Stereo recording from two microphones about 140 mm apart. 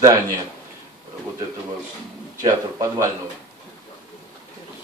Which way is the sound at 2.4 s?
20° right (ahead or behind).